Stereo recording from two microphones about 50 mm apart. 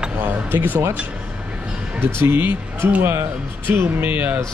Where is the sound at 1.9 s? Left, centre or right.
Right.